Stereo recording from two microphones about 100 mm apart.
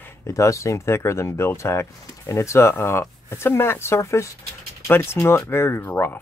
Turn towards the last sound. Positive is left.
turn(degrees=20)  # may be behind; listen again after turning